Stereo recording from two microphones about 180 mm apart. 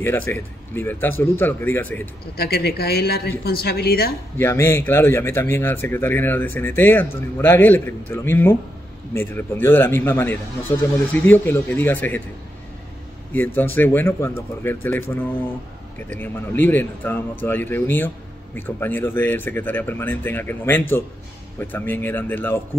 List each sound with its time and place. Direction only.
0.0 s a man's voice: 10° left (ahead or behind)
2.3 s a woman's voice: 60° left (ahead or behind)
4.4 s a man's voice: 15° left (ahead or behind)
13.3 s a man's voice: 10° left (ahead or behind)